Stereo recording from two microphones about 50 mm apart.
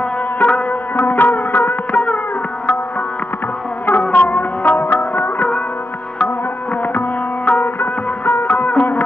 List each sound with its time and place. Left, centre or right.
0.4 s sitar: left
3.8 s music: left
7.4 s music: left